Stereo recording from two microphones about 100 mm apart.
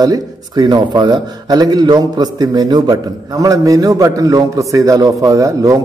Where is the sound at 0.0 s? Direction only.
45° right (ahead or behind).